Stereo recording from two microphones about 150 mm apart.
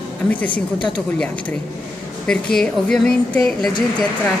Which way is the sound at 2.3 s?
5° left (ahead or behind).